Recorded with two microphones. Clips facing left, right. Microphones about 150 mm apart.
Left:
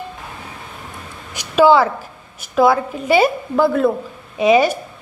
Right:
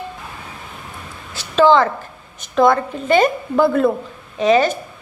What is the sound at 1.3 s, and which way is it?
A woman's voice, 10° left (ahead or behind).